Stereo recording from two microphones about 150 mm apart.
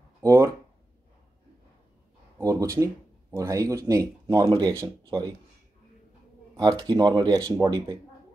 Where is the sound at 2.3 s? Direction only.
20° right (ahead or behind).